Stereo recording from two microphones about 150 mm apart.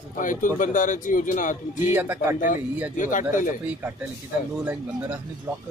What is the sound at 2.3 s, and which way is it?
Speech, 60° left (ahead or behind).